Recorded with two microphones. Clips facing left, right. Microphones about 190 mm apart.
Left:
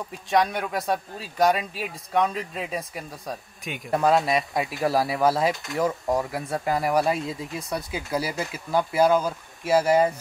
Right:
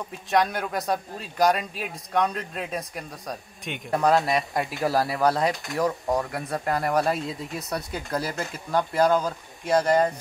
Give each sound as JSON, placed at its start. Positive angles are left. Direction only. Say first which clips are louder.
{"t": 0.3, "sound": "a man's voice", "louder": "left 1 dB", "side_deg": 0}